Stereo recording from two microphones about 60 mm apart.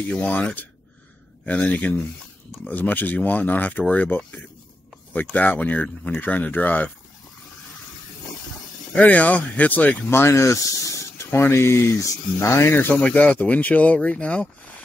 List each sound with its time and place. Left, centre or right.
0.1 s speech: left
8.9 s speech: left
11.2 s speech: left
12.9 s speech: left